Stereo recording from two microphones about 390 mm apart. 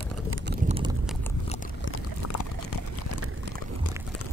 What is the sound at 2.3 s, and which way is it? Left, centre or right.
Clip-clop, left.